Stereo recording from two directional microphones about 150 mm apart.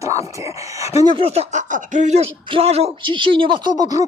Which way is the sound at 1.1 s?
40° right (ahead or behind).